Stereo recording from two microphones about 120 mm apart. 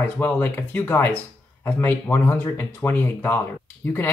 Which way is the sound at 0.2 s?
20° left (ahead or behind).